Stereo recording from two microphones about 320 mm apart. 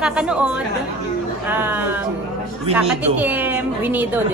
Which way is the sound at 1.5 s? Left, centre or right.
Centre.